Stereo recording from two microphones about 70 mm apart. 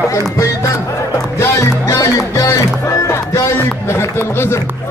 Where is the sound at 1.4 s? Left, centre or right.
Left.